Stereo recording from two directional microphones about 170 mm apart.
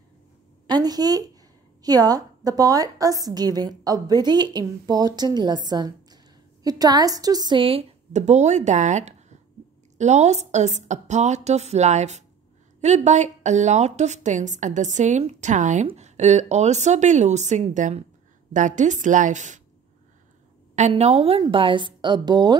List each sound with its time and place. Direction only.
0.7 s a woman's voice: 25° right (ahead or behind); by 19.6 s 45° right (ahead or behind)
20.7 s a woman's voice: 40° right (ahead or behind); by 22.6 s 25° right (ahead or behind)